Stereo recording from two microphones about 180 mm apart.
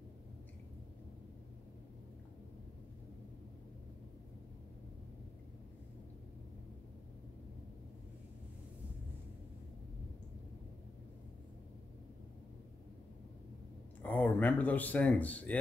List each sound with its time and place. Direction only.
14.0 s speech: 10° left (ahead or behind)